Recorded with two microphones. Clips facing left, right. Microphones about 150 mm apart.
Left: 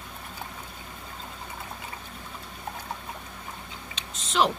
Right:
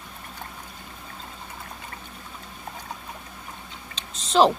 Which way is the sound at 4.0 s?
35° right (ahead or behind).